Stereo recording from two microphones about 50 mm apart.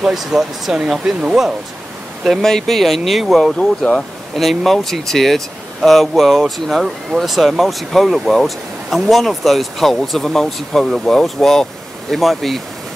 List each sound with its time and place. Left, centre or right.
0.0 s speech: centre
2.4 s speech: centre